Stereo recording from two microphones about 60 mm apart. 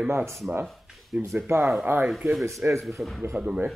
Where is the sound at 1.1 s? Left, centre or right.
Centre.